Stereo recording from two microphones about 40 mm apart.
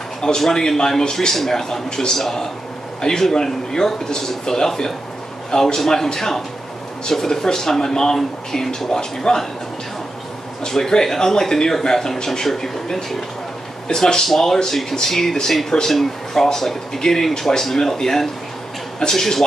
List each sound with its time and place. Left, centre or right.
0.2 s speech: centre
10.6 s speech: centre